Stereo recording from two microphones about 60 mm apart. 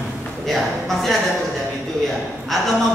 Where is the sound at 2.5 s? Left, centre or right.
Centre.